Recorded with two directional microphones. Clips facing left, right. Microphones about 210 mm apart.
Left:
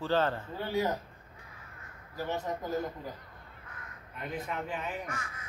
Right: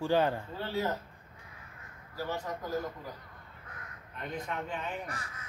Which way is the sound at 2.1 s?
20° left (ahead or behind).